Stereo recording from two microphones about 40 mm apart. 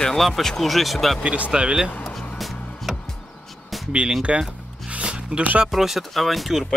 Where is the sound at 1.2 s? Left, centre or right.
Right.